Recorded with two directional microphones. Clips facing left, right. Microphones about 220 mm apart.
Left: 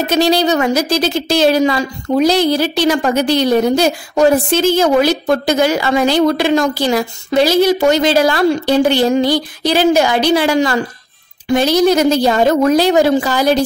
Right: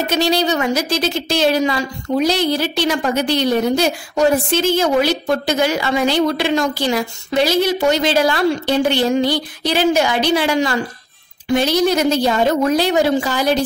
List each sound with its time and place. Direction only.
0.1 s a woman's voice: 40° left (ahead or behind)